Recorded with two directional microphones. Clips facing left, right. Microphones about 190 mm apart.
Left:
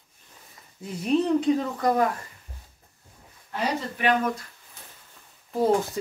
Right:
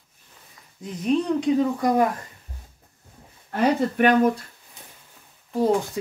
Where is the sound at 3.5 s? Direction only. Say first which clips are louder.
Right 8 dB; 50° right (ahead or behind).